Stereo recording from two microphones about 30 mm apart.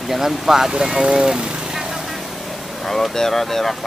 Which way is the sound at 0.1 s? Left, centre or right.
Centre.